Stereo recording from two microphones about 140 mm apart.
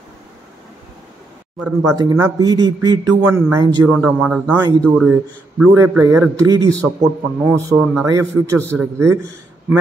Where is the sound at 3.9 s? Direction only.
5° right (ahead or behind).